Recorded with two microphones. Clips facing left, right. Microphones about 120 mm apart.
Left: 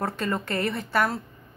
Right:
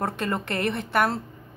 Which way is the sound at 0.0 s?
25° right (ahead or behind).